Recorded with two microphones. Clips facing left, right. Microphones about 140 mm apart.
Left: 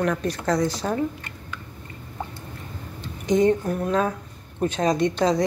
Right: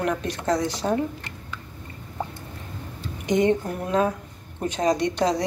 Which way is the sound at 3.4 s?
20° right (ahead or behind).